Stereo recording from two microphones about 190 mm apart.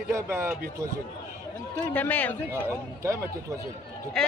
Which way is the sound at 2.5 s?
15° right (ahead or behind).